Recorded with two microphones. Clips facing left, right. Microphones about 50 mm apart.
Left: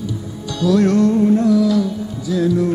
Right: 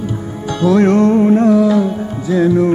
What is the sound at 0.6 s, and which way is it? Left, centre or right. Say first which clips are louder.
Music: right 3 dB; right.